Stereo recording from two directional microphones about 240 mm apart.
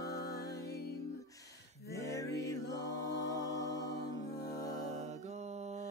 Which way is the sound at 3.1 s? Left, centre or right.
Left.